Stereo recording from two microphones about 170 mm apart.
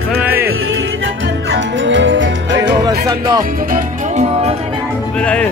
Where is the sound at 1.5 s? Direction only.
90° right.